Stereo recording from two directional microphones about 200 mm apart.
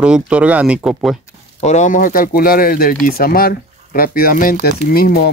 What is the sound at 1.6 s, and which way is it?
Speech, 35° left (ahead or behind).